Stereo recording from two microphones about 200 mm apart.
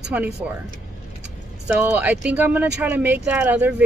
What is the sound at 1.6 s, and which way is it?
Speech, 10° right (ahead or behind).